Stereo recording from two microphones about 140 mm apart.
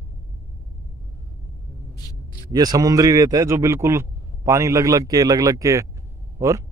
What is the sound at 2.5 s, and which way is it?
Speech, 25° right (ahead or behind).